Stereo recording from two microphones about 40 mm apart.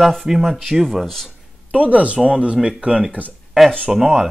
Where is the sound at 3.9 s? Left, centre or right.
Centre.